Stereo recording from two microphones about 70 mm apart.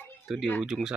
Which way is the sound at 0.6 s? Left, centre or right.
Centre.